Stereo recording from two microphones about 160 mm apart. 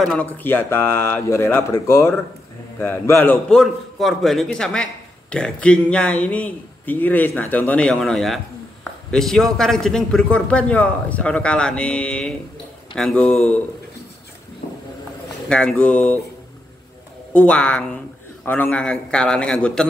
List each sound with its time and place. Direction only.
0.0 s a man's voice: 5° left (ahead or behind)
15.4 s a man's voice: 5° left (ahead or behind)
17.3 s a man's voice: 5° left (ahead or behind)